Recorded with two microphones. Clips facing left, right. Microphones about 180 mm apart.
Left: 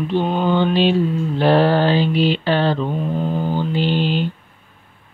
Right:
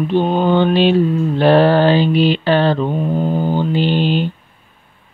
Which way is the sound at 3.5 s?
60° right (ahead or behind).